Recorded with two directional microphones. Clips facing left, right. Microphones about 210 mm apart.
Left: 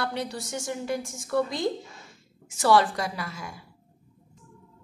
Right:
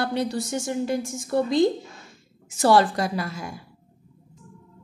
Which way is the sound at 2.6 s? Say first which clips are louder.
Right 3 dB; 40° right (ahead or behind).